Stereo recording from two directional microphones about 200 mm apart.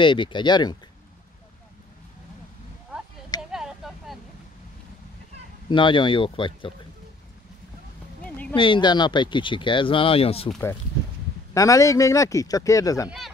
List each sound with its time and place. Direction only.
0.0 s speech: 25° left (ahead or behind)
3.5 s a sound: centre (ahead or behind)
5.7 s speech: 25° left (ahead or behind)
8.2 s a sound: 5° left (ahead or behind)
8.5 s speech: 25° left (ahead or behind)
11.5 s speech: 15° left (ahead or behind)